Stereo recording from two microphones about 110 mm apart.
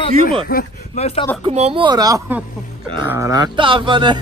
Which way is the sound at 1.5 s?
75° right (ahead or behind).